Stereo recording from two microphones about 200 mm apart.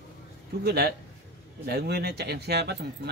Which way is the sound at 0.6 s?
55° right (ahead or behind).